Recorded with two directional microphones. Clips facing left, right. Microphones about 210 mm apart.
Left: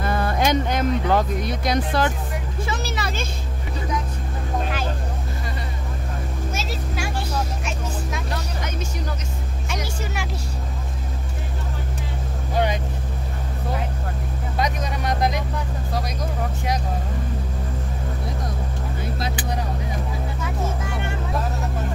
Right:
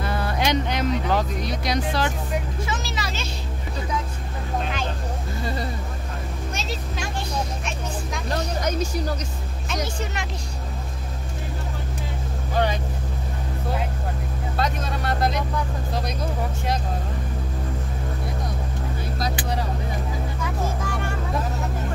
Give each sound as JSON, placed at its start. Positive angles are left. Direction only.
{"t": 0.0, "sound": "a woman's voice", "side_deg": 50}
{"t": 6.5, "sound": "vehicle", "side_deg": 5}
{"t": 14.6, "sound": "speech", "side_deg": 15}